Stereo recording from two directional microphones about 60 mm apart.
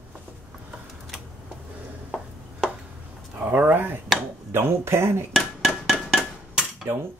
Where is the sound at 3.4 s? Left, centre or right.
Right.